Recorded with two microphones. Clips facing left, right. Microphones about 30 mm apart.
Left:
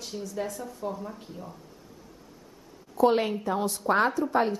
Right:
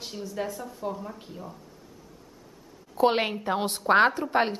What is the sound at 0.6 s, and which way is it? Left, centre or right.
Speech, centre.